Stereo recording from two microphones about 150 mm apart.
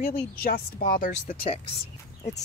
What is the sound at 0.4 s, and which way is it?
Speech, 75° left (ahead or behind).